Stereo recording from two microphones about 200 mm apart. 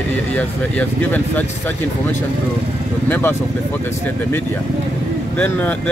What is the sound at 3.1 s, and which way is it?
Speech, 10° left (ahead or behind).